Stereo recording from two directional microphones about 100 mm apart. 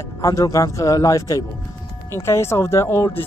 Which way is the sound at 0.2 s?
30° left (ahead or behind).